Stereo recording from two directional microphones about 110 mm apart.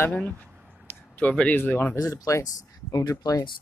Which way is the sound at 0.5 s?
5° right (ahead or behind).